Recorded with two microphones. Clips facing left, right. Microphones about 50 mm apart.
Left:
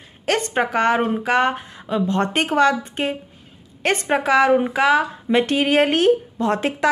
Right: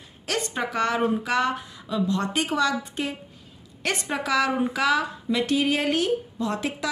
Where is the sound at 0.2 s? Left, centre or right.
Left.